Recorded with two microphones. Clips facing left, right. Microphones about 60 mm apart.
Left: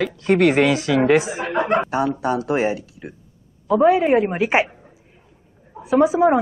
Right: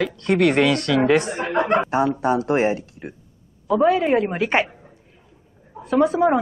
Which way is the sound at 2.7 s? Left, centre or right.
Right.